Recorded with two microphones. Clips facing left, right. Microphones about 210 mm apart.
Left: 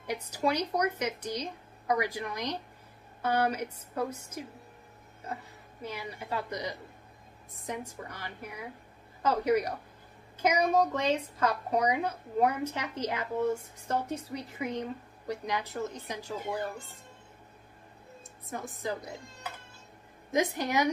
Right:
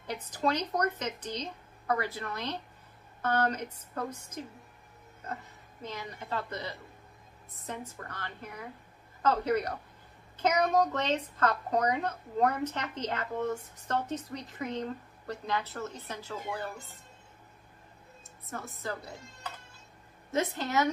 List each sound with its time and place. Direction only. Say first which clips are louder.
0.0 s a woman's voice: left 1 dB; 10° left (ahead or behind)
18.5 s a woman's voice: left 3 dB; 15° left (ahead or behind)